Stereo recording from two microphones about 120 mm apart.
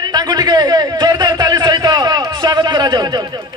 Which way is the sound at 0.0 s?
35° right (ahead or behind).